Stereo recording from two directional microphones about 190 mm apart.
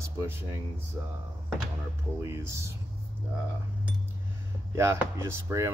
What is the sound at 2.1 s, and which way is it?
Speech, 15° right (ahead or behind).